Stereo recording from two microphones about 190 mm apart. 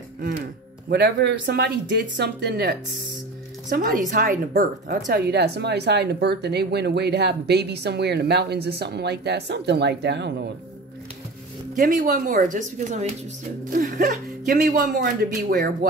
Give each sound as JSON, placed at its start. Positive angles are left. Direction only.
{"t": 0.8, "sound": "speech", "side_deg": -60}
{"t": 11.7, "sound": "speech", "side_deg": -45}